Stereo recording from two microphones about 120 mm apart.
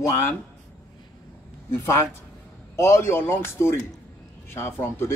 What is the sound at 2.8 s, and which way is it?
Speech, 20° left (ahead or behind).